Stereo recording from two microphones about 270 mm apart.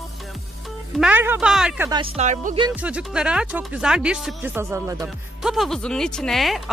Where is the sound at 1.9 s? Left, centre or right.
Centre.